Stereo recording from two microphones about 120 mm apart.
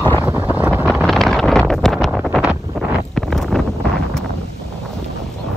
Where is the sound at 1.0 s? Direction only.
5° left (ahead or behind).